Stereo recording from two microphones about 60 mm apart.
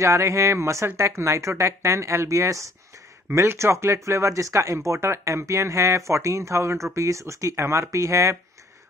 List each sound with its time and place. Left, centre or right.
0.0 s speech: right
3.3 s speech: right